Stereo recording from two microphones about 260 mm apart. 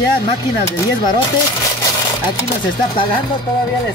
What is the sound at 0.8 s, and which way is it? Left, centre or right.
Speech, centre.